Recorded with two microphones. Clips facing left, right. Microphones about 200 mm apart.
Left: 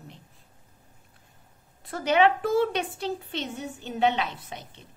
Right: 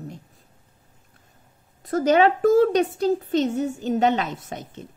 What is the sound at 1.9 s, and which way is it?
Speech, 40° right (ahead or behind).